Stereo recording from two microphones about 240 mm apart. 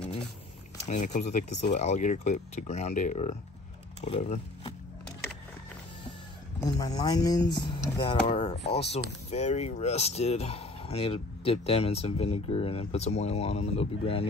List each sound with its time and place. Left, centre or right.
0.8 s speech: left
6.8 s speech: centre